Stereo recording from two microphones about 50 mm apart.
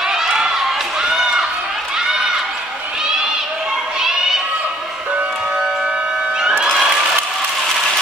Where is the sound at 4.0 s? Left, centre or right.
Centre.